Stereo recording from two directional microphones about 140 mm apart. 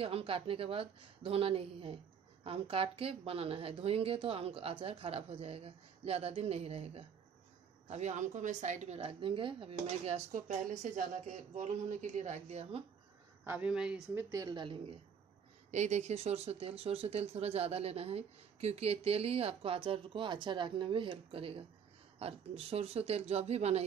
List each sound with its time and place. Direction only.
0.0 s speech: 40° right (ahead or behind)
7.9 s a woman's voice: 55° right (ahead or behind)
13.4 s speech: 10° right (ahead or behind)
14.1 s a woman's voice: 20° right (ahead or behind)
14.5 s a woman's voice: 35° right (ahead or behind)
15.7 s speech: 55° right (ahead or behind)